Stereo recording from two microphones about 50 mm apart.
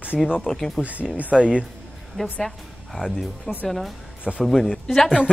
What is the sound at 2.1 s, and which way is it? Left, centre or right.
A woman's voice, centre.